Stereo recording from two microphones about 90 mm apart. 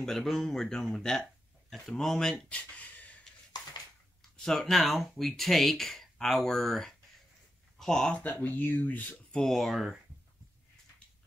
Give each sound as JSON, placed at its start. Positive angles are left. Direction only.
{"t": 0.0, "sound": "speech", "side_deg": 5}
{"t": 4.5, "sound": "speech", "side_deg": 5}
{"t": 8.2, "sound": "speech", "side_deg": 20}
{"t": 9.4, "sound": "speech", "side_deg": 0}